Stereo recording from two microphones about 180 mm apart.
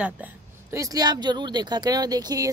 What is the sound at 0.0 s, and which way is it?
Speech, 10° right (ahead or behind).